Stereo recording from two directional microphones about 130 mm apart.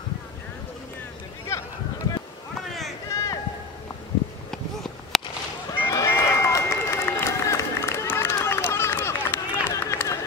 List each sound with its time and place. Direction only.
1.5 s a sound: 20° left (ahead or behind)
3.1 s run: 25° left (ahead or behind)
5.1 s honk: centre (ahead or behind)
5.8 s run: 25° left (ahead or behind)